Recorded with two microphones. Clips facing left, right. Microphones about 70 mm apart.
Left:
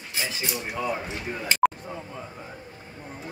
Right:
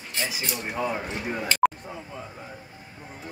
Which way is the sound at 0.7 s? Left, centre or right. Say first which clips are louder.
Right 1 dB; centre.